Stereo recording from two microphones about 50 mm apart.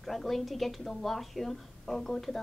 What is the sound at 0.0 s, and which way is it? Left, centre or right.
A woman's voice, centre.